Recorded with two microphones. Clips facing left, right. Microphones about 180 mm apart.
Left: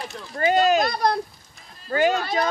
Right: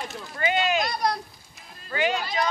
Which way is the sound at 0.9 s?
55° left (ahead or behind).